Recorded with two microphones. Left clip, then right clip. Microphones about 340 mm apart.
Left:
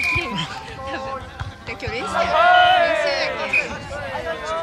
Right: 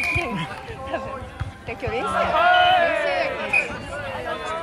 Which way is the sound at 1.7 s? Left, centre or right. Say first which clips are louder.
Right 1 dB; centre.